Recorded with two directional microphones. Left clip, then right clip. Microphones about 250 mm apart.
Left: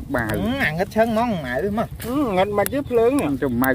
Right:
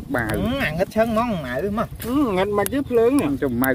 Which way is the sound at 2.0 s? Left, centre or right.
Right.